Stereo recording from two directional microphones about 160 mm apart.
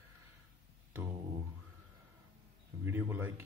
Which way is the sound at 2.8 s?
15° right (ahead or behind).